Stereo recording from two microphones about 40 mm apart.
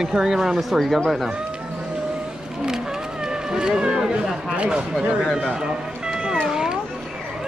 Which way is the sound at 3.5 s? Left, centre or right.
Centre.